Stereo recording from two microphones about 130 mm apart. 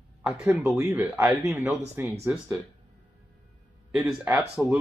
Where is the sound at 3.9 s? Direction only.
Centre (ahead or behind).